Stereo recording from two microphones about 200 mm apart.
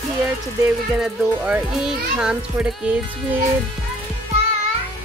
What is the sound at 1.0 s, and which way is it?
Speech, 5° right (ahead or behind).